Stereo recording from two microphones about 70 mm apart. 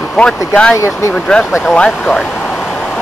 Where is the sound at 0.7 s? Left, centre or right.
Left.